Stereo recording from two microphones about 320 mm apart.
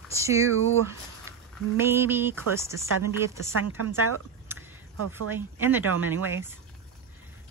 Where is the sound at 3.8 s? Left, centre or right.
Right.